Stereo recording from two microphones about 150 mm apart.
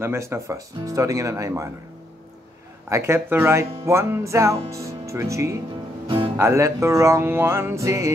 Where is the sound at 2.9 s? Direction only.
20° right (ahead or behind).